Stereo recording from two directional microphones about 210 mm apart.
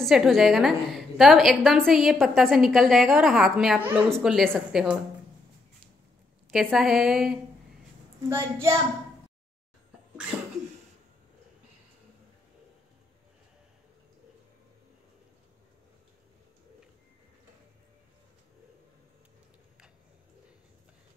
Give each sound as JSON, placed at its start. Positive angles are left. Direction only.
{"t": 0.0, "sound": "a woman's voice", "side_deg": 0}
{"t": 6.5, "sound": "a woman's voice", "side_deg": 0}
{"t": 8.3, "sound": "a child's voice", "side_deg": -10}